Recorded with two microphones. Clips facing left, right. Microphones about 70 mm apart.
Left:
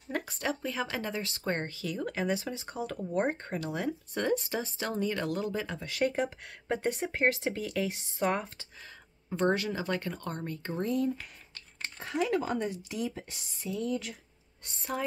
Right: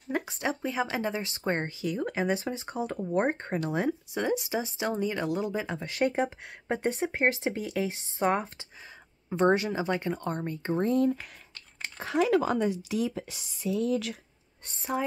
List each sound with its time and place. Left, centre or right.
0.1 s speech: centre
4.1 s speech: centre
12.0 s speech: right